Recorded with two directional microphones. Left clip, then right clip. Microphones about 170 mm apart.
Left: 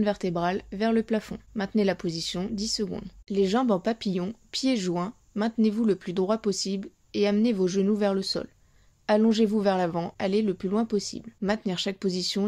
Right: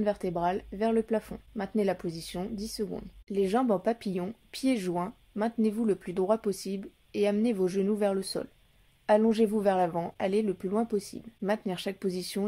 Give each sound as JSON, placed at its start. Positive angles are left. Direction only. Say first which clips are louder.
{"t": 0.0, "sound": "speech", "louder": "left 2 dB", "side_deg": 35}